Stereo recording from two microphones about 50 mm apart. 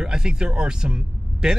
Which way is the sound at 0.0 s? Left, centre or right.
Centre.